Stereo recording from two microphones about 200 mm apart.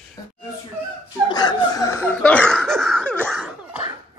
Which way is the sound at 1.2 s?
20° left (ahead or behind).